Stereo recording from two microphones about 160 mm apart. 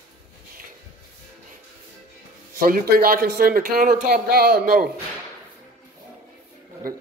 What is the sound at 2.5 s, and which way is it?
A man's voice, 65° right (ahead or behind).